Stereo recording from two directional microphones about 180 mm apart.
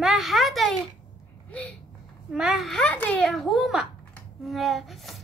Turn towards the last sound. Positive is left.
turn(degrees=0)  # may be behind; listen again after turning